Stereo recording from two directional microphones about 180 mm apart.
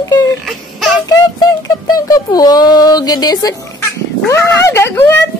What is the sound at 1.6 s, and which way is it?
Speech, 20° left (ahead or behind).